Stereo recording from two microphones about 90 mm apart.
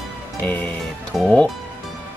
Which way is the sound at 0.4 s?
20° left (ahead or behind).